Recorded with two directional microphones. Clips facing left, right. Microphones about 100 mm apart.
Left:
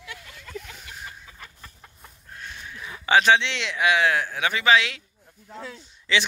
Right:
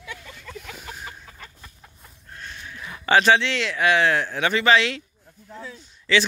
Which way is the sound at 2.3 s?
5° left (ahead or behind).